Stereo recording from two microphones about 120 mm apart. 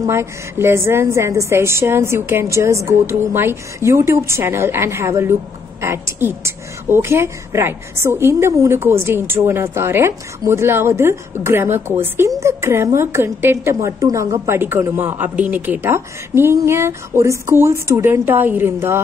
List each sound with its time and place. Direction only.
0.0 s a woman's voice: 20° right (ahead or behind)